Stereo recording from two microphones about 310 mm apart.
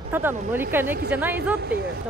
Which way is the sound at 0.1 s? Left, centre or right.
Centre.